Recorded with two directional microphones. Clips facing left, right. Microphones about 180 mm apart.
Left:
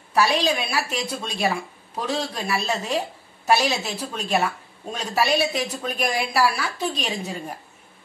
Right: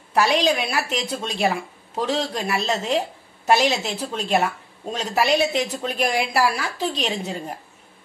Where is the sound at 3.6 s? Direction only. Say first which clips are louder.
Right 3 dB; 25° right (ahead or behind).